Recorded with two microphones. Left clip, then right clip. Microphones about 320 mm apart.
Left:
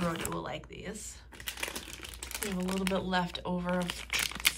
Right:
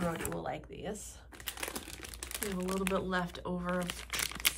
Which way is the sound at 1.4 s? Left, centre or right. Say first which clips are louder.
Left 3 dB; centre.